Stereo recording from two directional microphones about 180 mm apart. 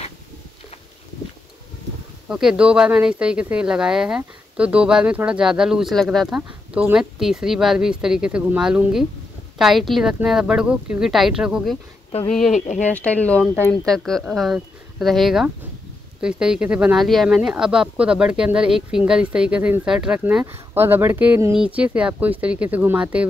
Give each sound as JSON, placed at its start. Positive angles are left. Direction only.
{"t": 2.2, "sound": "speech", "side_deg": -5}
{"t": 12.5, "sound": "speech", "side_deg": 45}
{"t": 12.9, "sound": "speech", "side_deg": 10}